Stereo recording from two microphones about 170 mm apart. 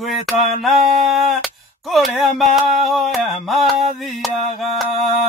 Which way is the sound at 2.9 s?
Centre (ahead or behind).